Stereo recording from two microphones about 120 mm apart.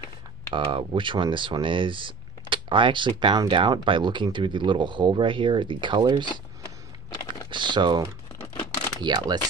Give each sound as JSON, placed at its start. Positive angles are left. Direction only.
{"t": 0.5, "sound": "speech", "side_deg": -45}
{"t": 7.2, "sound": "typing", "side_deg": -40}
{"t": 9.0, "sound": "speech", "side_deg": -35}